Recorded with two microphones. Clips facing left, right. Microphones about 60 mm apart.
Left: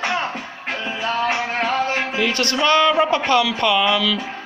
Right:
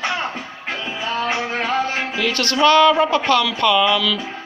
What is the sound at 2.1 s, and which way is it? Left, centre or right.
A man's voice, left.